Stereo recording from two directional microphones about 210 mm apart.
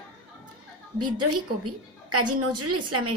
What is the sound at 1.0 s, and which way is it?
A woman's voice, 90° right.